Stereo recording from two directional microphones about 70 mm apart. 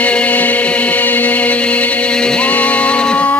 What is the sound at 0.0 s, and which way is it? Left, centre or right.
Chant, centre.